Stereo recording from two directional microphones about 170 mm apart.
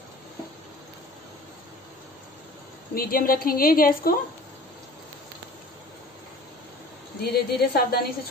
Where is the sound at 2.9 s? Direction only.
60° left (ahead or behind).